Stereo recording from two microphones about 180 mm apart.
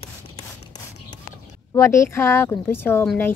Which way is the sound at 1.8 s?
15° left (ahead or behind).